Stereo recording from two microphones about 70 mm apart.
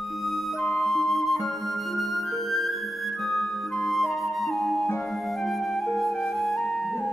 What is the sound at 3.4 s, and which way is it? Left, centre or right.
Music, centre.